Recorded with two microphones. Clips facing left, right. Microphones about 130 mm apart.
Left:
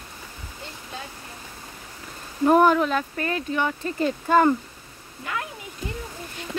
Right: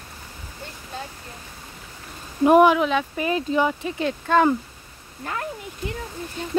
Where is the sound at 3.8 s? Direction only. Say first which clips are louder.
Left 1 dB; centre (ahead or behind).